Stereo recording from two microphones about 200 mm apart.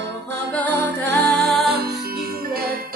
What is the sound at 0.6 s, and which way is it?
Music, 60° right (ahead or behind).